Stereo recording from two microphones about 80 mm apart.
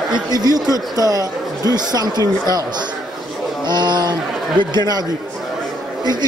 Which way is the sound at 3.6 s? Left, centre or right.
Right.